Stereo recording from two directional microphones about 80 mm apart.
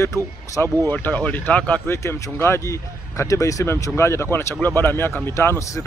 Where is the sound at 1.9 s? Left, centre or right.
Left.